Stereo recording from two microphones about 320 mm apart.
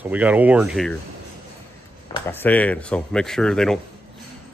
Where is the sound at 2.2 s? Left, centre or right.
Centre.